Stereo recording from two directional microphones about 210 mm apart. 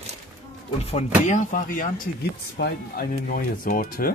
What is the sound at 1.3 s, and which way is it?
Speech, 35° left (ahead or behind).